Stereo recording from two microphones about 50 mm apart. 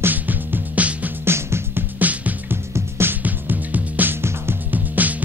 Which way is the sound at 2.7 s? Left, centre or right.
Right.